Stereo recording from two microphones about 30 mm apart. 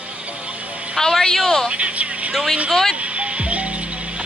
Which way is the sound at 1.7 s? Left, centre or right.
Right.